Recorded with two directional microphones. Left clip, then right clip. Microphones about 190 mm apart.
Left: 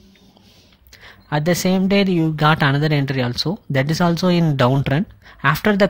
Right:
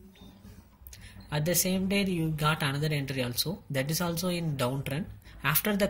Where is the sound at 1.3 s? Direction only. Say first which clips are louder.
Left 11 dB; 40° left (ahead or behind).